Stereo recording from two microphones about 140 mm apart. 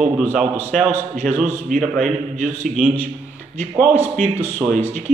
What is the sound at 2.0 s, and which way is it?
Speech, 60° right (ahead or behind).